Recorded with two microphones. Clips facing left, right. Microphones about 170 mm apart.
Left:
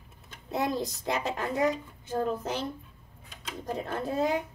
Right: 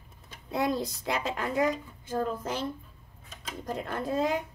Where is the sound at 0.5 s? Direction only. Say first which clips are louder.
Right 1 dB; 20° left (ahead or behind).